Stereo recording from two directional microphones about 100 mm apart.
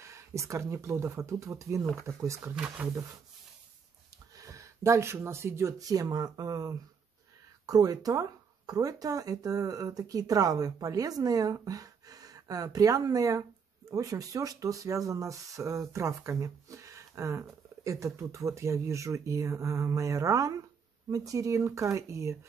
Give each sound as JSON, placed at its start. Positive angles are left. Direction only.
{"t": 0.0, "sound": "speech", "side_deg": -30}
{"t": 2.8, "sound": "speech", "side_deg": -15}
{"t": 4.4, "sound": "speech", "side_deg": -30}